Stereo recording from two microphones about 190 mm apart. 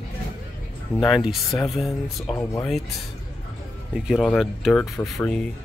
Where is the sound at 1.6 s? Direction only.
Centre (ahead or behind).